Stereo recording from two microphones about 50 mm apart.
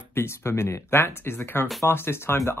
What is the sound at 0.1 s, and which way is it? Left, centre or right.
Speech, left.